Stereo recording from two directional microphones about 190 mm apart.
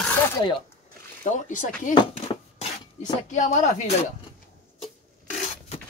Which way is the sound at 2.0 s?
30° left (ahead or behind).